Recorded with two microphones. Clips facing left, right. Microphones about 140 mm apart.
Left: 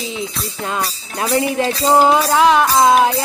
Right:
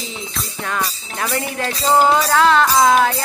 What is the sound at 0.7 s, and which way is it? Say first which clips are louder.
Music: left 1 dB; 20° left (ahead or behind).